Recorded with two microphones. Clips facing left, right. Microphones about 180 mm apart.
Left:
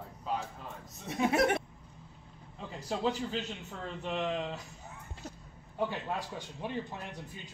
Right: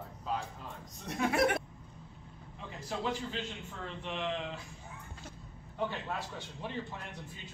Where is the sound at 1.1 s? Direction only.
Centre (ahead or behind).